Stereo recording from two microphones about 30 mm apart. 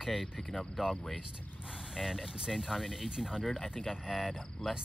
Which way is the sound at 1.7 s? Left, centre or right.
Centre.